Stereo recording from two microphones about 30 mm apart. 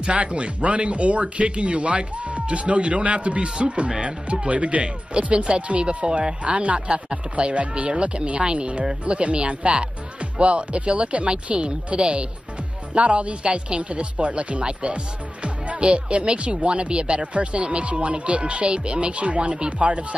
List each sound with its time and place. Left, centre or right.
0.0 s speech: right
3.4 s speech: right
15.4 s music: right
15.8 s speech: right